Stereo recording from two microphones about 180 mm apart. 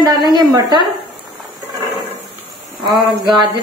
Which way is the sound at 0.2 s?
25° right (ahead or behind).